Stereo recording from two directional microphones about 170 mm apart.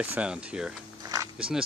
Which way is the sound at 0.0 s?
5° right (ahead or behind).